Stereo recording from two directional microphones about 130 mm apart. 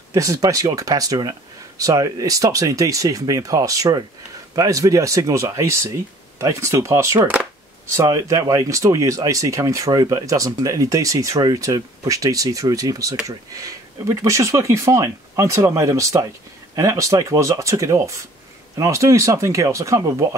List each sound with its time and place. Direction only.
0.1 s speech: 25° right (ahead or behind)